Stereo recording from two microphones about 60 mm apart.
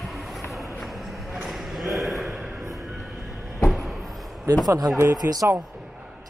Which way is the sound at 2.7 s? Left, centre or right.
Centre.